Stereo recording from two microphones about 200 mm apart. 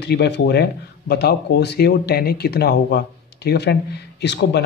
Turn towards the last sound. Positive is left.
turn(degrees=60)  # may be behind; listen again after turning